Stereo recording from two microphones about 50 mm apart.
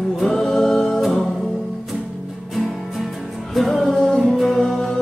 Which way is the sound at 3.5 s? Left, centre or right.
Centre.